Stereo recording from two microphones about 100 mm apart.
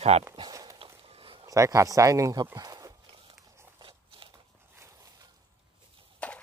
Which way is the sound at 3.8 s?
60° right (ahead or behind).